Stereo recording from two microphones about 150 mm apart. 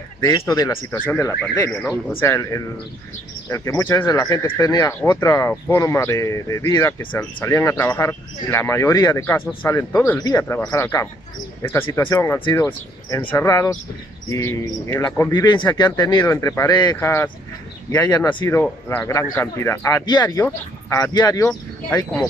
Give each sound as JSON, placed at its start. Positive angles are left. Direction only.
{"t": 0.2, "sound": "speech", "side_deg": 25}
{"t": 18.5, "sound": "speech", "side_deg": 15}